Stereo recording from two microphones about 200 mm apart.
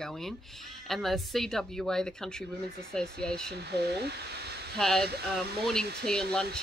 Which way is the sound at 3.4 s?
55° right (ahead or behind).